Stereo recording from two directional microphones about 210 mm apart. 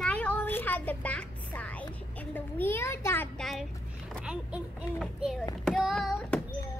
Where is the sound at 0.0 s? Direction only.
5° left (ahead or behind).